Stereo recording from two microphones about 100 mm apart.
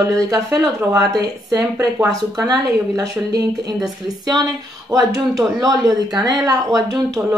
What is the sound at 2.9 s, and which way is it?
Speech, 35° right (ahead or behind).